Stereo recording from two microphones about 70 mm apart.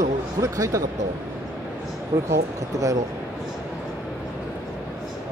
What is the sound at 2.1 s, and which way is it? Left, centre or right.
Speech, right.